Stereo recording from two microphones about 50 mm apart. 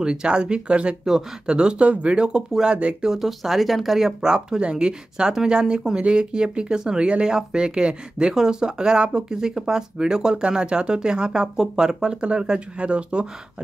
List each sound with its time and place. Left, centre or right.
0.0 s speech: centre
3.1 s speech: centre; by 13.3 s right